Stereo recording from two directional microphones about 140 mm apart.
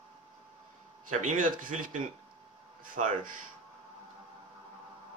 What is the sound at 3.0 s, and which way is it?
Speech, 60° right (ahead or behind).